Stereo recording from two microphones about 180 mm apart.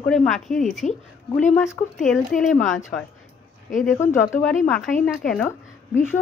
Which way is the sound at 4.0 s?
15° left (ahead or behind).